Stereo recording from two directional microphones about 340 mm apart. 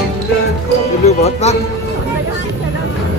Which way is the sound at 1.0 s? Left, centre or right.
Centre.